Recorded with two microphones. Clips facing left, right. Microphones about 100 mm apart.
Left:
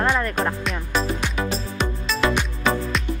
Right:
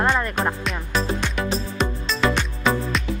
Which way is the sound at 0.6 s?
Centre (ahead or behind).